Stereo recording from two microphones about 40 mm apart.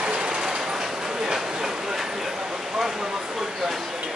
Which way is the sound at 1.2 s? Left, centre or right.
Centre.